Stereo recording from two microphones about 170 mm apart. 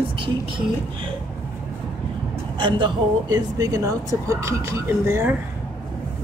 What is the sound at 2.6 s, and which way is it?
Speech, 30° right (ahead or behind).